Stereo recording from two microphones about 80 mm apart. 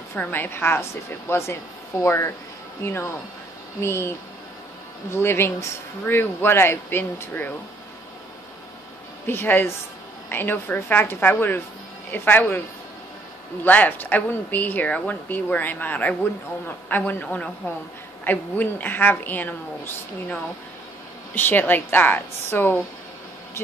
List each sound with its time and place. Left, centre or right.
0.1 s a woman's voice: left
5.1 s a woman's voice: left
9.2 s a woman's voice: left
13.7 s a woman's voice: left
21.4 s a woman's voice: left